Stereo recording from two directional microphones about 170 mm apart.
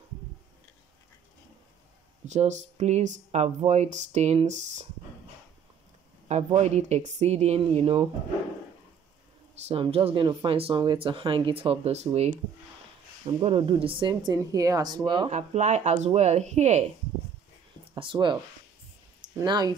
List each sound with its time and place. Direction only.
2.2 s speech: 45° right (ahead or behind)
6.2 s speech: 40° right (ahead or behind)
9.7 s speech: 35° right (ahead or behind)
13.4 s speech: 30° right (ahead or behind)
15.2 s speech: 45° right (ahead or behind)
17.9 s speech: 30° right (ahead or behind)